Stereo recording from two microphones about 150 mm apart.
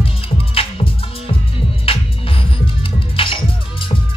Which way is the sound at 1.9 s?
40° left (ahead or behind).